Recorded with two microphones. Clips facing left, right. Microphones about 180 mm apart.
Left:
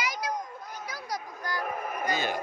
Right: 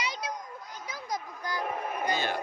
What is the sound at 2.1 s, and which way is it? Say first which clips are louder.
Speech: left 1 dB; 10° left (ahead or behind).